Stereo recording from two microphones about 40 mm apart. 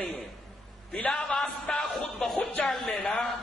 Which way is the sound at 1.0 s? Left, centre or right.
Left.